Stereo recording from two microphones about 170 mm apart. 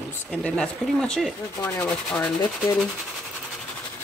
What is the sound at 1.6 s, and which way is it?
Speech, 15° left (ahead or behind).